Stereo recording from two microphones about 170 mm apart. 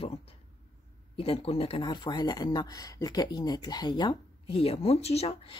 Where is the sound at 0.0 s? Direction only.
35° left (ahead or behind).